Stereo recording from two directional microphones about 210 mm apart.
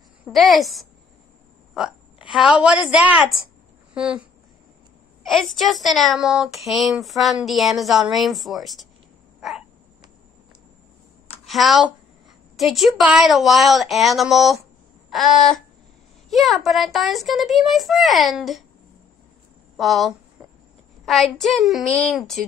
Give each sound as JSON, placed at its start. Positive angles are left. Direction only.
{"t": 0.2, "sound": "speech", "side_deg": 0}
{"t": 1.7, "sound": "hiccup", "side_deg": 0}
{"t": 2.2, "sound": "a woman's voice", "side_deg": 25}
{"t": 2.6, "sound": "speech", "side_deg": -5}
{"t": 5.2, "sound": "speech", "side_deg": 0}
{"t": 9.4, "sound": "a sound", "side_deg": 0}
{"t": 11.4, "sound": "speech", "side_deg": 0}
{"t": 19.8, "sound": "speech", "side_deg": 0}